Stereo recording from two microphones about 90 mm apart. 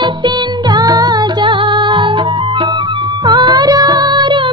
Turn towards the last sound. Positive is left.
turn(degrees=-55)  # may be behind; listen again after turning